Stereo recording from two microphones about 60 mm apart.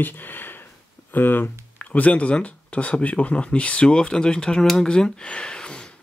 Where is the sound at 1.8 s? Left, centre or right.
Left.